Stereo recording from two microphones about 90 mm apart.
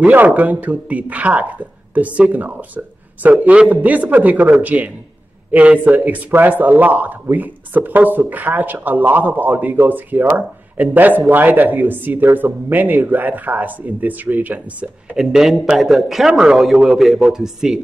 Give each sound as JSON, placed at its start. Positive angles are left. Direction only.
{"t": 0.0, "sound": "speech", "side_deg": -15}